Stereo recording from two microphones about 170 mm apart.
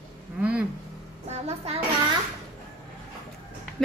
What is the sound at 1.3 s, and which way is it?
Speech, 40° right (ahead or behind).